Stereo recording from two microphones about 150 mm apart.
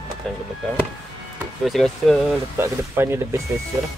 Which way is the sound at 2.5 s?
15° right (ahead or behind).